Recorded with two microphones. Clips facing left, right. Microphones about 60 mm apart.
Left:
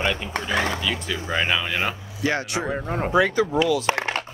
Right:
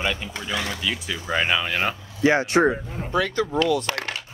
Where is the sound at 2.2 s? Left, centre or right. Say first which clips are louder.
Right 5 dB; right.